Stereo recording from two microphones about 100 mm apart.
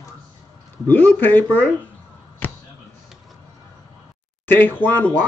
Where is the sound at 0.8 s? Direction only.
15° left (ahead or behind).